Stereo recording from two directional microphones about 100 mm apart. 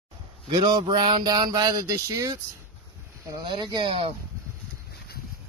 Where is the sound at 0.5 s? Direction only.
40° right (ahead or behind).